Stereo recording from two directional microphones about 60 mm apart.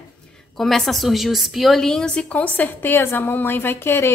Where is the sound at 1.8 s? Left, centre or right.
Centre; by 4.1 s left.